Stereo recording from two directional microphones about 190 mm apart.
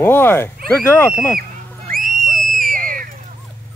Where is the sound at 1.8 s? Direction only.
45° right (ahead or behind).